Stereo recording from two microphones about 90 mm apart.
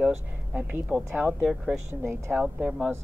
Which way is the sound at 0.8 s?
10° right (ahead or behind).